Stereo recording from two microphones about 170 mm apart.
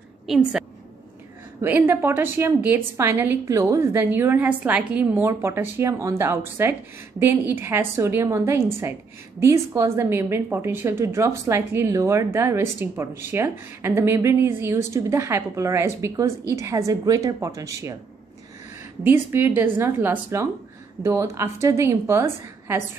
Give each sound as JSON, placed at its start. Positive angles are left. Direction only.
{"t": 0.3, "sound": "a woman's voice", "side_deg": -5}
{"t": 19.0, "sound": "a woman's voice", "side_deg": -10}